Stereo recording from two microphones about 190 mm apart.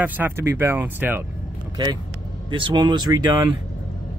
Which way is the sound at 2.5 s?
25° right (ahead or behind).